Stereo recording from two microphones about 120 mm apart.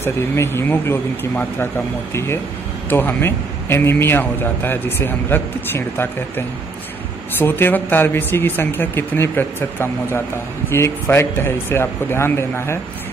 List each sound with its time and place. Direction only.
0.0 s a man's voice: 20° left (ahead or behind)